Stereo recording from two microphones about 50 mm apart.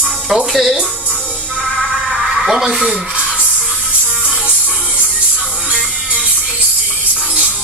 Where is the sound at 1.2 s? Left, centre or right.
Left.